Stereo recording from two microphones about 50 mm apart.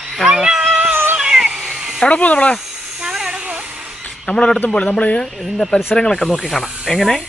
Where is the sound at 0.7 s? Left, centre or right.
Right.